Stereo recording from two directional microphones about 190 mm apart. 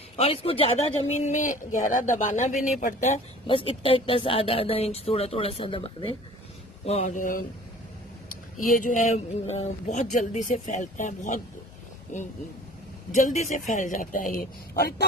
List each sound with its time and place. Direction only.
0.1 s speech: 30° left (ahead or behind)
3.4 s speech: 30° left (ahead or behind); by 7.4 s 45° left (ahead or behind)
8.6 s speech: 45° left (ahead or behind)